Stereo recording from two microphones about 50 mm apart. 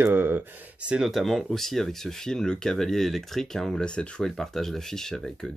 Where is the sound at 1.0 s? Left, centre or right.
Centre.